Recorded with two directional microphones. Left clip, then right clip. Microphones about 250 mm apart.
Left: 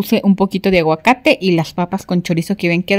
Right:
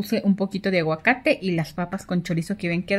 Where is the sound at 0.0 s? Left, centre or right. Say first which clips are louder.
Left 9 dB; left.